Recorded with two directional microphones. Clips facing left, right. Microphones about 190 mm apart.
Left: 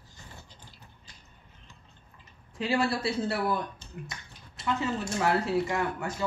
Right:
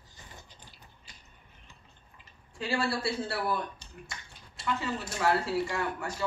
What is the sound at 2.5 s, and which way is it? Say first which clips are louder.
Speech: left 3 dB; 20° left (ahead or behind).